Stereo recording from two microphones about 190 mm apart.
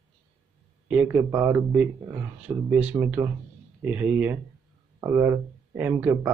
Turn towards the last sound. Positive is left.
turn(degrees=-10)  # may be behind; listen again after turning